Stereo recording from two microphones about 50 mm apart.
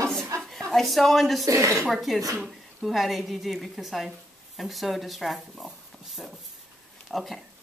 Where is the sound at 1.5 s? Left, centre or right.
Right.